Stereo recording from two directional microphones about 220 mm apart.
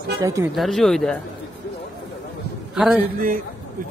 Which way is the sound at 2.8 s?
5° right (ahead or behind).